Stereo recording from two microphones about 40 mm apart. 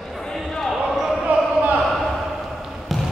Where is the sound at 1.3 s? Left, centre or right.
Right.